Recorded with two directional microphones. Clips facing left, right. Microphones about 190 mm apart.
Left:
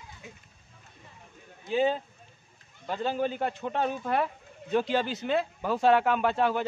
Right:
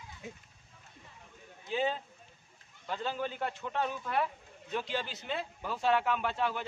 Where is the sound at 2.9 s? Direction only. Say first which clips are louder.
Left 6 dB; 40° left (ahead or behind).